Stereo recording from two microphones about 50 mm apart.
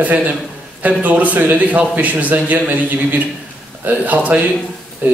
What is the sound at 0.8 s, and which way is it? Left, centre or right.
A man's voice, right.